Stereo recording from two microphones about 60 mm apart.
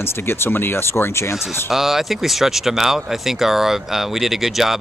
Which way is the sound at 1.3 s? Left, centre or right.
Centre.